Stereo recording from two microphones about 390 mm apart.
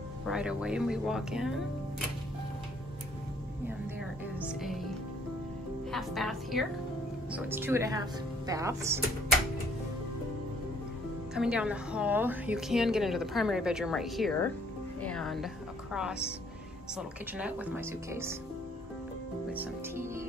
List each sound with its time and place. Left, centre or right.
0.3 s a woman's voice: centre
4.4 s a woman's voice: centre
5.9 s a woman's voice: centre
11.3 s a woman's voice: centre
19.5 s a woman's voice: centre